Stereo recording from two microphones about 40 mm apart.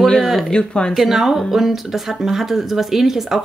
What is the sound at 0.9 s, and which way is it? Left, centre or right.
A woman's voice, centre.